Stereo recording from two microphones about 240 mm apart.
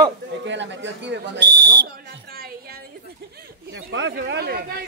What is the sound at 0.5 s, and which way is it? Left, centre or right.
Speech, right.